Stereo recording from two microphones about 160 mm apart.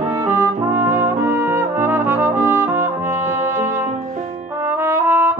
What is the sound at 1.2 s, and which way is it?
Trumpet, 15° right (ahead or behind).